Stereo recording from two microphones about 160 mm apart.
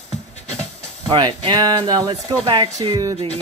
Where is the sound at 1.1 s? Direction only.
30° right (ahead or behind).